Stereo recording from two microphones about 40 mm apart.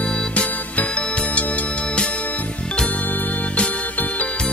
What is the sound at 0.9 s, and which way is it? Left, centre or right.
Music, left.